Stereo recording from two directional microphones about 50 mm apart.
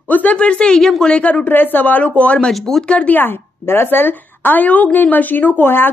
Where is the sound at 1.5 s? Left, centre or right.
Left.